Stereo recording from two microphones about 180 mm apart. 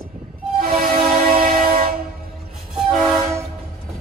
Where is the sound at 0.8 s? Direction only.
55° right (ahead or behind).